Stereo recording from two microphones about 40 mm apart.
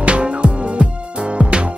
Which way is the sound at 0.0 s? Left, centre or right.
Right.